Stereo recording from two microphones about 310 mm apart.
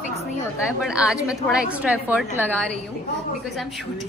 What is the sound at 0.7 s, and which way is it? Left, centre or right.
A woman's voice, centre.